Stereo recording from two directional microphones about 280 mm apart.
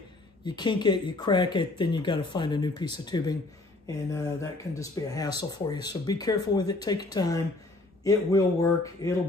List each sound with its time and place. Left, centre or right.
0.5 s speech: centre